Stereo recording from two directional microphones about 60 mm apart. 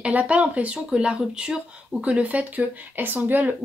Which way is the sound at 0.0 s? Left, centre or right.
Right.